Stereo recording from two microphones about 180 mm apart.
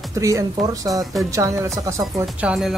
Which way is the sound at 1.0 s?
Centre (ahead or behind).